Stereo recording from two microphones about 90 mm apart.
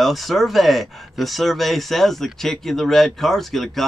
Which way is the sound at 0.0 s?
Centre (ahead or behind).